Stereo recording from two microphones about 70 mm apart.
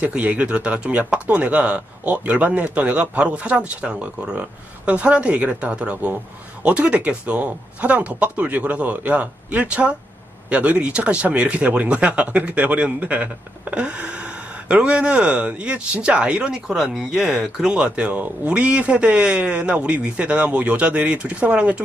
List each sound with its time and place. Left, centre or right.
0.0 s speech: centre